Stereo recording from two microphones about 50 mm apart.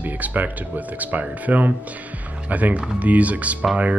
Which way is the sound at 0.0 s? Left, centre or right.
Right.